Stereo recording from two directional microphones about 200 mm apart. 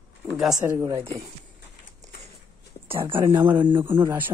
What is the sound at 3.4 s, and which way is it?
Speech, 10° right (ahead or behind).